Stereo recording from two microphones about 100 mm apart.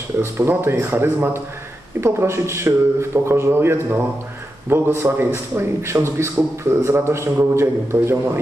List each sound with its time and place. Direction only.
0.2 s a man's voice: 25° right (ahead or behind)